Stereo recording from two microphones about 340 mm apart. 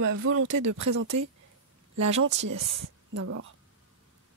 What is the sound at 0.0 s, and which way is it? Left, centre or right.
Speech, right.